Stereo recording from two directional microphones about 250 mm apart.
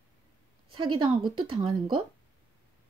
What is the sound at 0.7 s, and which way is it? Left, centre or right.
A woman's voice, centre.